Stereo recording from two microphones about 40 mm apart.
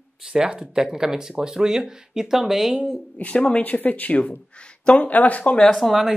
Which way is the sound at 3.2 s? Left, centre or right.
Left.